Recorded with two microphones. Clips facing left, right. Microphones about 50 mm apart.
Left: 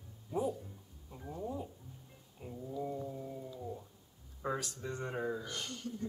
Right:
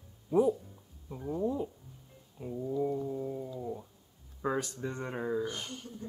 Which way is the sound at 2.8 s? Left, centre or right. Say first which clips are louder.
Right 6 dB; centre.